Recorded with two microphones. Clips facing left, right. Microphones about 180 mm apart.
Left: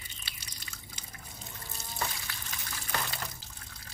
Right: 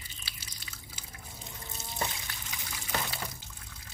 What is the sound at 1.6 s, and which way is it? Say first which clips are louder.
Water: right 1 dB; 20° right (ahead or behind).